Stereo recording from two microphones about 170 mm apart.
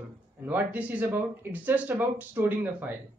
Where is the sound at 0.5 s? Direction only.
10° right (ahead or behind).